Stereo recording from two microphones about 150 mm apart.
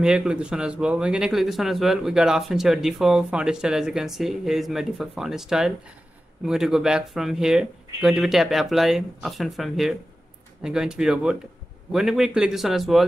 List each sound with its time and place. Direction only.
0.0 s speech: 5° right (ahead or behind)